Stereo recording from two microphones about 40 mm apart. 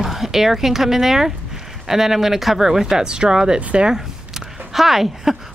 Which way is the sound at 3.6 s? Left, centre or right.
Right.